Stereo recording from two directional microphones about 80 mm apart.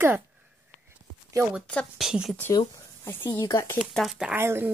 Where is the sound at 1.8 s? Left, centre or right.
Centre.